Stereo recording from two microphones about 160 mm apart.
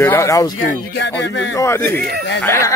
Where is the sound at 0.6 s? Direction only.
90° left.